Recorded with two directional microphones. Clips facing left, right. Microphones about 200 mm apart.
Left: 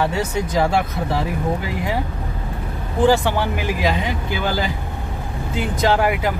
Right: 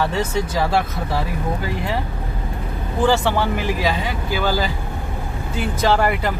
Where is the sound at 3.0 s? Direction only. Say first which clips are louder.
Left 1 dB; 15° left (ahead or behind).